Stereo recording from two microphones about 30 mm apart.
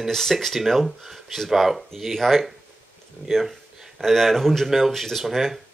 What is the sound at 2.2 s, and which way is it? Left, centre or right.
Speech, centre.